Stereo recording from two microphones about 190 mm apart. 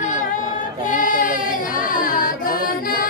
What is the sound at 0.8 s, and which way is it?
Singing, 45° left (ahead or behind).